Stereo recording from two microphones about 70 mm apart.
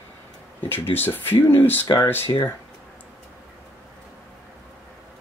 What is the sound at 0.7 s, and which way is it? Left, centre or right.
Speech, left.